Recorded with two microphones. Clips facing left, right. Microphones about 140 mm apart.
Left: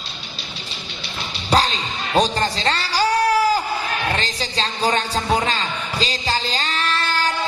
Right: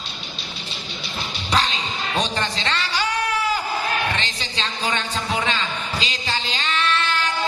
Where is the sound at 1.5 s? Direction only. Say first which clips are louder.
Left 4 dB; 35° left (ahead or behind).